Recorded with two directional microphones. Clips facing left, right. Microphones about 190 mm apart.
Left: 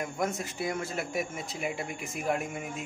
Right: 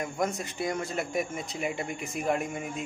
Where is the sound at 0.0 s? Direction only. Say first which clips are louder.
Right 1 dB; 5° left (ahead or behind).